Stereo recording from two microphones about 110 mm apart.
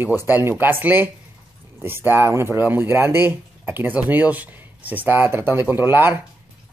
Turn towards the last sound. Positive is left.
turn(degrees=-20)  # may be behind; listen again after turning